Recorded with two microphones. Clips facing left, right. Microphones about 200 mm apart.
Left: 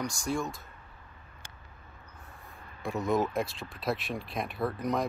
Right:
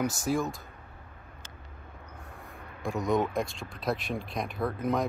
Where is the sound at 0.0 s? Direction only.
5° right (ahead or behind).